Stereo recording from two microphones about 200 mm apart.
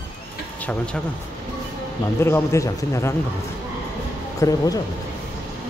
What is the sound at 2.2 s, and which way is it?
Speech, 15° left (ahead or behind).